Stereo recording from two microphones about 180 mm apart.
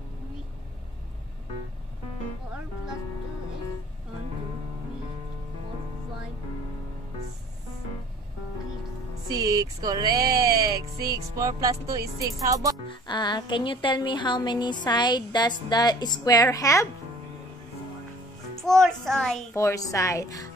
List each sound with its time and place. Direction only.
9.3 s music: 20° right (ahead or behind)
12.8 s speech: 25° left (ahead or behind)
18.6 s a child's voice: centre (ahead or behind)
19.5 s speech: 15° left (ahead or behind)